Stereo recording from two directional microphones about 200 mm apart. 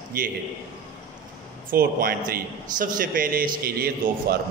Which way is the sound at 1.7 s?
45° right (ahead or behind).